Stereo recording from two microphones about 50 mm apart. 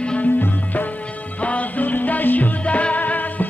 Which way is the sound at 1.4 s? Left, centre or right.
Left.